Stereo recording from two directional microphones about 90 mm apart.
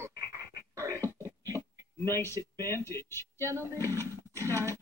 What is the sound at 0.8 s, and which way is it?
Cough, 25° left (ahead or behind).